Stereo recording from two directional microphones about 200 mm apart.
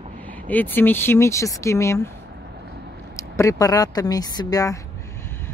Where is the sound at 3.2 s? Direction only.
15° left (ahead or behind).